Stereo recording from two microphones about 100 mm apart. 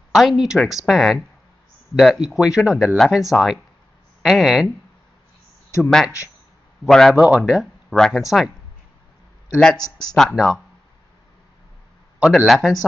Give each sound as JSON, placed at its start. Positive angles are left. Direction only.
{"t": 0.1, "sound": "speech", "side_deg": 0}
{"t": 5.8, "sound": "speech", "side_deg": 5}
{"t": 7.2, "sound": "speech", "side_deg": -10}
{"t": 7.9, "sound": "speech", "side_deg": 0}
{"t": 9.8, "sound": "speech", "side_deg": 40}
{"t": 10.1, "sound": "speech", "side_deg": 0}
{"t": 12.2, "sound": "speech", "side_deg": 0}